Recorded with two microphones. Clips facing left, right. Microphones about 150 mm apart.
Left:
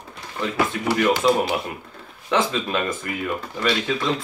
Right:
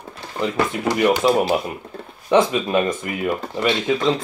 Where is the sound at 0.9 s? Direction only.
30° right (ahead or behind).